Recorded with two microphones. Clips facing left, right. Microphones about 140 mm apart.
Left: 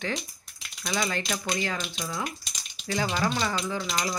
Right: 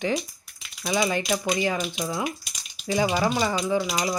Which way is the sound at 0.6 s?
10° right (ahead or behind).